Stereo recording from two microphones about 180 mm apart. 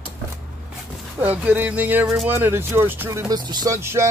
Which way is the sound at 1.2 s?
10° right (ahead or behind).